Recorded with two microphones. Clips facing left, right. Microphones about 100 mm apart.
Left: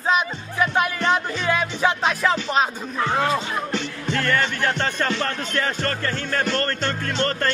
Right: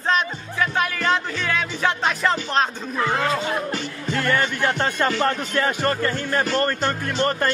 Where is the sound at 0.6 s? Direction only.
20° left (ahead or behind).